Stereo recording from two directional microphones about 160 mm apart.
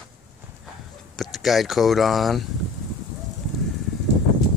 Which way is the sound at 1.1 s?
Centre (ahead or behind).